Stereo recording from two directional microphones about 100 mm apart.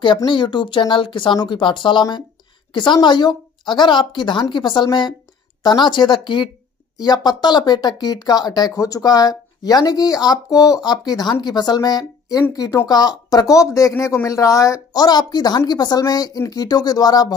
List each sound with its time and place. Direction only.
0.0 s a woman's voice: 55° left (ahead or behind)